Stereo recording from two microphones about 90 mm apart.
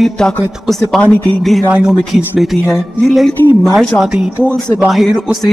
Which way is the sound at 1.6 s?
15° right (ahead or behind).